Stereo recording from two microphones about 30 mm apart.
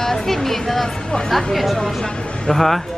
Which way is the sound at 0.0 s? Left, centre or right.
Centre.